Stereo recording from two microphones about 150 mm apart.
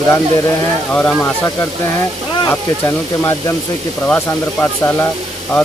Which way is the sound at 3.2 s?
20° left (ahead or behind).